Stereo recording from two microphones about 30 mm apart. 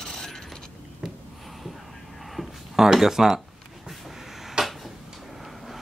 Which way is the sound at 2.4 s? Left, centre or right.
Centre.